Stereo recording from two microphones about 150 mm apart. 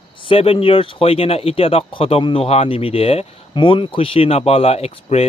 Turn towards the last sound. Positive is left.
turn(degrees=45)  # may be behind; listen again after turning